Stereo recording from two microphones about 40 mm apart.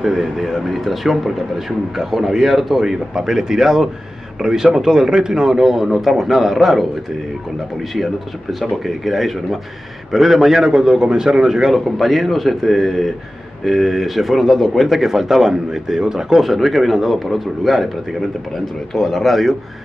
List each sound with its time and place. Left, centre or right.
0.0 s a man's voice: centre
7.9 s a man's voice: centre
15.0 s a man's voice: centre
18.9 s speech: centre